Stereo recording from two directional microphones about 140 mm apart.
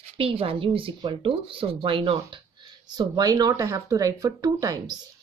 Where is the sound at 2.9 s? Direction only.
30° right (ahead or behind).